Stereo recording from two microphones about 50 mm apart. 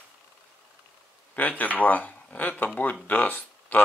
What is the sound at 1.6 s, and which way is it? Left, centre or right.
Speech, left.